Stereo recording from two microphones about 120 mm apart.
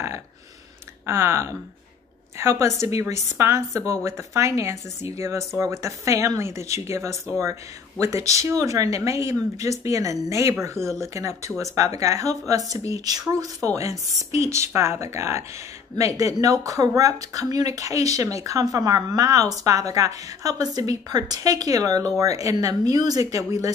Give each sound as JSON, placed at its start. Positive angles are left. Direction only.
{"t": 1.0, "sound": "speech", "side_deg": -25}
{"t": 2.6, "sound": "speech", "side_deg": -25}